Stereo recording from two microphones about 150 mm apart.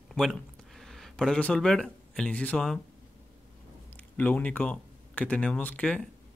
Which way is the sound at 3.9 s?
10° left (ahead or behind).